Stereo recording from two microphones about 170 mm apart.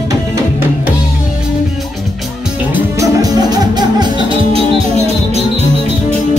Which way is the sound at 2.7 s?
20° right (ahead or behind).